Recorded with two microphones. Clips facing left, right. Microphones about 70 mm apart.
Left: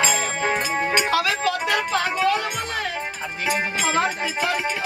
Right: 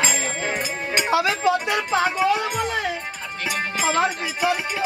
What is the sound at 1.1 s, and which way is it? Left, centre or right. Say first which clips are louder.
Music: right 2 dB; right.